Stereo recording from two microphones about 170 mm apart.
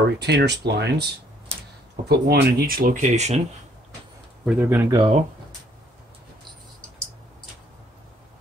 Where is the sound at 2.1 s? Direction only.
70° right (ahead or behind); by 3.4 s 45° right (ahead or behind).